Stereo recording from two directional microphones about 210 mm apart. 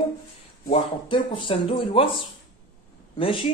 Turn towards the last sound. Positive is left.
turn(degrees=25)  # may be behind; listen again after turning